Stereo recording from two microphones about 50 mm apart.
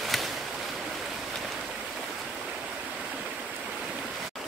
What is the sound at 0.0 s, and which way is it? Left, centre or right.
Boat, centre.